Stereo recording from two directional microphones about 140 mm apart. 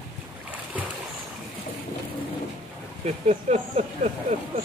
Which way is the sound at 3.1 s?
55° right (ahead or behind).